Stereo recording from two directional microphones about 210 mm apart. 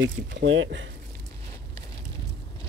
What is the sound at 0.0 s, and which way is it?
Speech, 60° right (ahead or behind).